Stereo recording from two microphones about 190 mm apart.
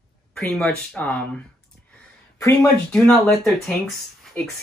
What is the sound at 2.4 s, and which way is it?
Speech, 15° left (ahead or behind).